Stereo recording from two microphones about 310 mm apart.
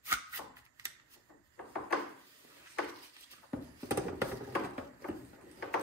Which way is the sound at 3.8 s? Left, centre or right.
Centre.